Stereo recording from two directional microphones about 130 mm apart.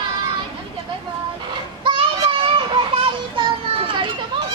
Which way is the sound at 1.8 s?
40° right (ahead or behind).